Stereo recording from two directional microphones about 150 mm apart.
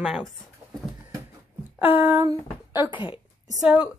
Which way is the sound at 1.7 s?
15° right (ahead or behind).